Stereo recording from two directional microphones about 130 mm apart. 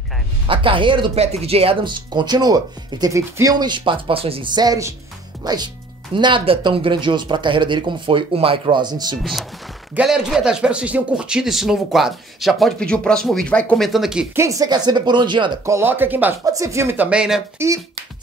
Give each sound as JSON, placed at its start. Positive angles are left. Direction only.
{"t": 0.5, "sound": "speech", "side_deg": -40}
{"t": 1.2, "sound": "speech", "side_deg": -55}
{"t": 4.6, "sound": "speech", "side_deg": -25}
{"t": 9.2, "sound": "speech", "side_deg": 0}
{"t": 13.8, "sound": "speech", "side_deg": -5}
{"t": 14.3, "sound": "speech", "side_deg": -25}
{"t": 15.6, "sound": "speech", "side_deg": -20}
{"t": 16.4, "sound": "speech", "side_deg": -25}
{"t": 17.6, "sound": "speech", "side_deg": -20}